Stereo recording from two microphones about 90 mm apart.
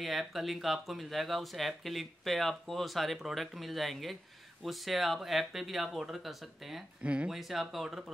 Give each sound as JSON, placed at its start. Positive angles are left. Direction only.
{"t": 0.0, "sound": "speech", "side_deg": 0}
{"t": 7.0, "sound": "speech", "side_deg": -15}
{"t": 7.3, "sound": "speech", "side_deg": 0}